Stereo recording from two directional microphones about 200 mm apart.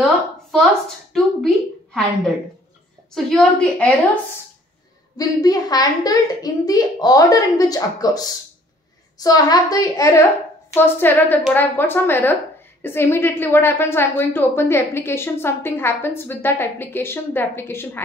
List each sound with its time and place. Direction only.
0.0 s a sound: centre (ahead or behind)
3.3 s a woman's voice: 5° left (ahead or behind)
5.1 s a woman's voice: 20° left (ahead or behind)